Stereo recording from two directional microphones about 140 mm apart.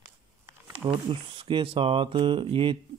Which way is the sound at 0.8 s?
40° right (ahead or behind).